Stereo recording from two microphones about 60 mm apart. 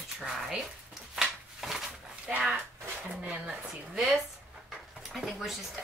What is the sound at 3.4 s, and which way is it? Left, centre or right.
Speech, centre.